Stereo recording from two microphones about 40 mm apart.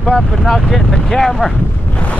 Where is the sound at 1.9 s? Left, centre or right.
Left.